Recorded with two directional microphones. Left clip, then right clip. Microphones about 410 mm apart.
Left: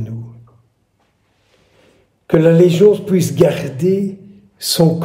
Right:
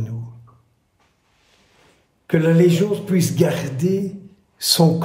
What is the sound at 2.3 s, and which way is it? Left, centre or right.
A man's voice, centre.